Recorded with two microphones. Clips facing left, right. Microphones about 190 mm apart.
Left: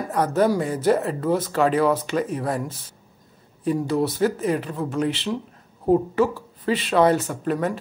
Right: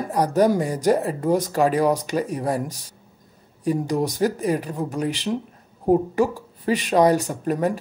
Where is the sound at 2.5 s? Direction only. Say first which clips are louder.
Right 2 dB; 40° right (ahead or behind).